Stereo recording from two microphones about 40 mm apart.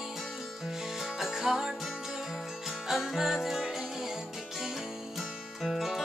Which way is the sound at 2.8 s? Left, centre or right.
Centre.